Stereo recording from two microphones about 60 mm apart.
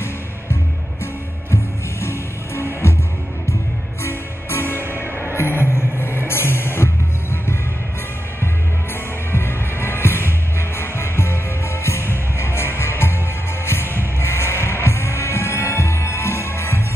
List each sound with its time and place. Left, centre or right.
1.5 s music: left
4.0 s music: left
9.3 s music: left